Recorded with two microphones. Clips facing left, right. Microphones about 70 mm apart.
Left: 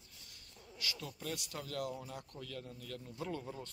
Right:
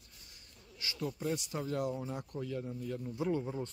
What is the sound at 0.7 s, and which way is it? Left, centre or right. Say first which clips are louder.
Speech: right 6 dB; right.